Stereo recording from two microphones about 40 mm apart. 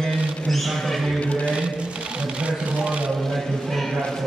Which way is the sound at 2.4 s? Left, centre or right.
Right.